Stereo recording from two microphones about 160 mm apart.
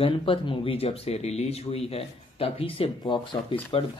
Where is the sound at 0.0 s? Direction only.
30° left (ahead or behind).